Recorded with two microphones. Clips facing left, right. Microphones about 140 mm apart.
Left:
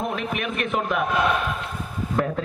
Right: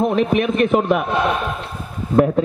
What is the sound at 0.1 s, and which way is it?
A man's voice, 30° right (ahead or behind).